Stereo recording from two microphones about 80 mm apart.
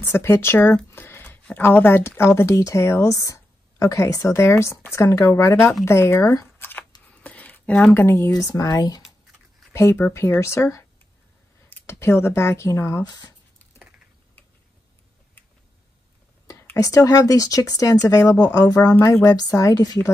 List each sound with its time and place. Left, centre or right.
0.0 s speech: left
6.4 s a sound: left
8.0 s speech: left
8.3 s speech: left
9.7 s speech: left
11.8 s speech: left
13.0 s speech: left
16.7 s speech: left